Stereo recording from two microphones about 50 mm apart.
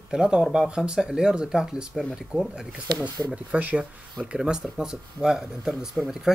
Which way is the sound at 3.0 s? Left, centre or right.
Right.